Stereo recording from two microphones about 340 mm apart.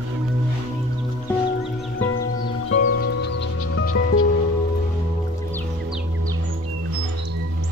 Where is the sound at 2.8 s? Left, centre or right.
Left.